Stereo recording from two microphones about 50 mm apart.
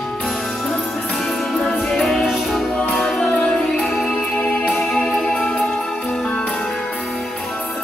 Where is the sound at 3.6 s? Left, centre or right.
Centre.